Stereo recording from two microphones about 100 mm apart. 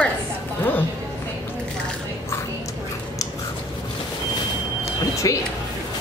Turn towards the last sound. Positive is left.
turn(degrees=35)  # may be behind; listen again after turning